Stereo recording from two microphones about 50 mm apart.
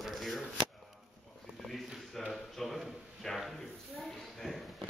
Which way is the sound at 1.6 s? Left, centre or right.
Centre.